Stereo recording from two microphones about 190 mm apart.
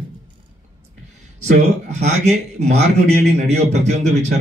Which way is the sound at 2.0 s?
35° right (ahead or behind).